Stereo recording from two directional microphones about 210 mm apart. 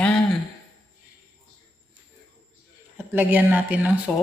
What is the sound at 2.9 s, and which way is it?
A woman's voice, 10° right (ahead or behind).